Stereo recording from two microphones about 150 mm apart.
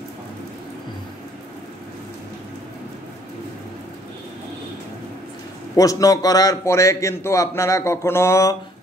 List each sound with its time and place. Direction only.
5.8 s a man's voice: 25° left (ahead or behind)